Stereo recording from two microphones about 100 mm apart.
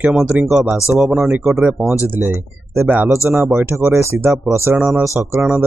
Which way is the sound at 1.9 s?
20° right (ahead or behind).